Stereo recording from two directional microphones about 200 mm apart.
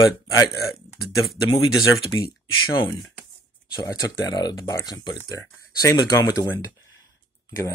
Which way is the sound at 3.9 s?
20° left (ahead or behind).